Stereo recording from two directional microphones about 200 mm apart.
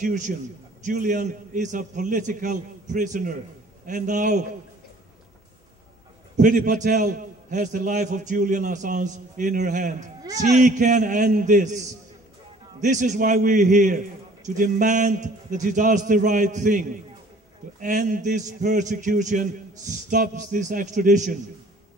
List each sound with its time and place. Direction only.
0.0 s a man's voice: 40° right (ahead or behind)
6.3 s a man's voice: 40° right (ahead or behind)